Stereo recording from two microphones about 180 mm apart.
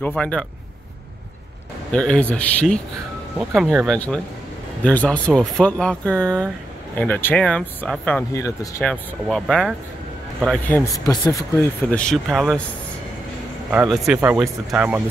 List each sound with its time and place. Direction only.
0.1 s speech: 5° left (ahead or behind)
1.9 s speech: 5° left (ahead or behind)
8.3 s speech: 20° left (ahead or behind)
9.3 s speech: centre (ahead or behind)
11.1 s speech: 15° left (ahead or behind); by 12.6 s centre (ahead or behind)
13.8 s speech: 5° right (ahead or behind)